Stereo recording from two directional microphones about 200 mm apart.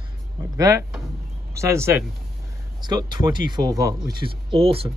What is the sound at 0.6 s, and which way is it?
Speech, 15° right (ahead or behind).